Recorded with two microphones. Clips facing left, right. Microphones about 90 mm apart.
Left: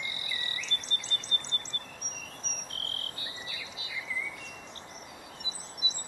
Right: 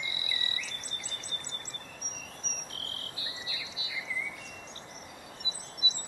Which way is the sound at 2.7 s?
50° left (ahead or behind).